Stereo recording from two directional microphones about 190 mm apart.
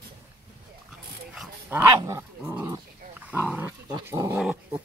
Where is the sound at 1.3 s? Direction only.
5° right (ahead or behind).